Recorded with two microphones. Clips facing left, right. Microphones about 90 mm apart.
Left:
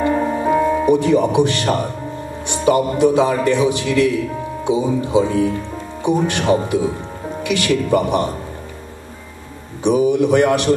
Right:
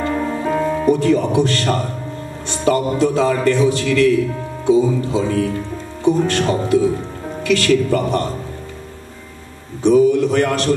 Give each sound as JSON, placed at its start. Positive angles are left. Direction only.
{"t": 0.0, "sound": "music", "side_deg": 15}
{"t": 2.4, "sound": "a man's voice", "side_deg": 15}
{"t": 9.8, "sound": "a man's voice", "side_deg": 20}